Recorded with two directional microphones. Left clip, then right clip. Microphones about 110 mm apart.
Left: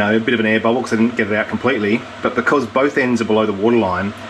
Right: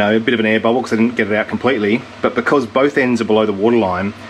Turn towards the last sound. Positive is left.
turn(degrees=-15)  # may be behind; listen again after turning